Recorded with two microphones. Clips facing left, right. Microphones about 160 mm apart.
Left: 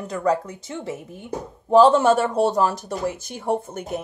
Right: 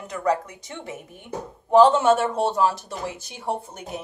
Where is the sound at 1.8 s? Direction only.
40° left (ahead or behind).